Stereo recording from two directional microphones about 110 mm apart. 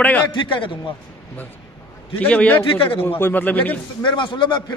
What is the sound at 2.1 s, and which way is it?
Speech, 15° left (ahead or behind).